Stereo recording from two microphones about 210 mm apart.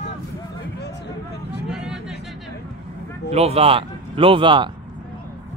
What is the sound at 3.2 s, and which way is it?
A man's voice, 30° right (ahead or behind).